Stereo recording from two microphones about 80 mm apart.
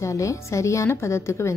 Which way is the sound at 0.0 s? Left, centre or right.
Left.